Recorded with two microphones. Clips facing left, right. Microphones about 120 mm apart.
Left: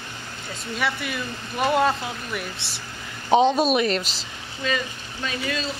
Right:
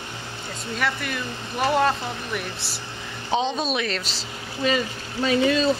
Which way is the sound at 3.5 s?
10° left (ahead or behind).